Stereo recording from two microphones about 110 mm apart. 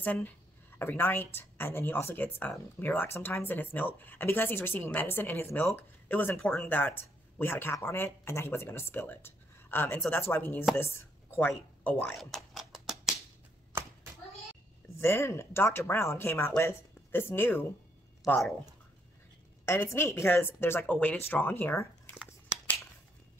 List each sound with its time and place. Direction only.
0.0 s speech: 15° left (ahead or behind)
12.2 s cat: centre (ahead or behind)
15.0 s speech: 20° left (ahead or behind)
18.2 s speech: centre (ahead or behind)
19.7 s speech: 25° left (ahead or behind)